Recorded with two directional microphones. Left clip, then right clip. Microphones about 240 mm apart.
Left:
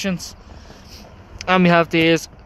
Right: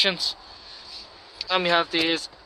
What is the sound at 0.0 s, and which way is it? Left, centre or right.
Speech, centre.